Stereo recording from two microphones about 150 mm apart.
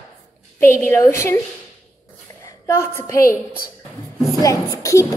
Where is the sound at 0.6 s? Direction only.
15° left (ahead or behind).